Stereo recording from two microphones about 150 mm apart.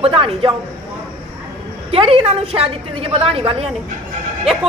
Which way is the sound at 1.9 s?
40° right (ahead or behind).